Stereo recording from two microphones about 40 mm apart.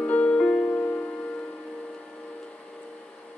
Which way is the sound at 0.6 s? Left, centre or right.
Left.